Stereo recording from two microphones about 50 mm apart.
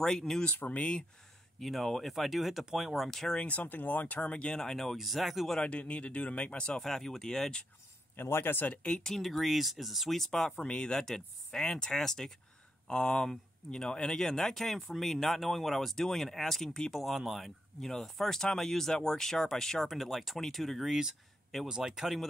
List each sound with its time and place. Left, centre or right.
0.0 s speech: centre
0.6 s speech: left
1.6 s speech: centre
3.3 s speech: left; by 5.6 s centre
5.6 s speech: left
6.8 s speech: centre
8.2 s speech: left
8.8 s speech: centre
9.1 s speech: centre
10.6 s speech: centre
17.0 s speech: centre